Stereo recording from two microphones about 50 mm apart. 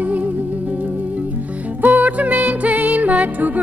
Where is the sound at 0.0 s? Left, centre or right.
Right.